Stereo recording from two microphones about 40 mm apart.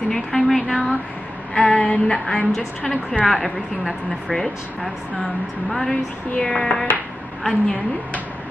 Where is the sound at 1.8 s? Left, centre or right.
Left.